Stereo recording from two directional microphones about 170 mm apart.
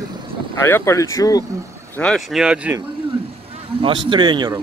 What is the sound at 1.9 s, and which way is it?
Speech, 5° left (ahead or behind).